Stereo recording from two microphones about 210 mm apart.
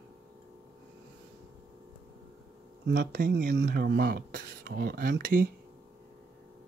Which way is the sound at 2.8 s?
50° right (ahead or behind).